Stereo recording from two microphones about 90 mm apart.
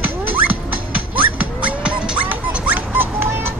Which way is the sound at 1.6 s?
15° right (ahead or behind).